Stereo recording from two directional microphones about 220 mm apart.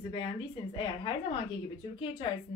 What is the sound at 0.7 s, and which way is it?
Speech, 20° left (ahead or behind).